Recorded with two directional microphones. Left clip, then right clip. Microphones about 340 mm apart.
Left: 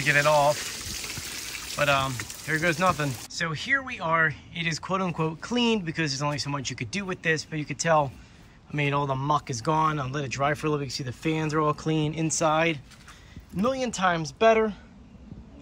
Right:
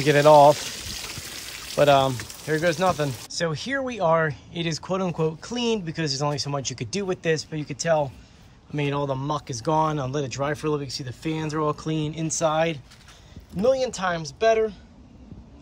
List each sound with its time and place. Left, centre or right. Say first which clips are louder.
0.0 s speech: right 7 dB; centre
1.3 s pour: even; centre
1.8 s speech: right 6 dB; centre